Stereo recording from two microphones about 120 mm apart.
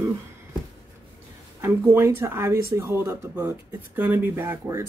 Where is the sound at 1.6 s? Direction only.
20° right (ahead or behind).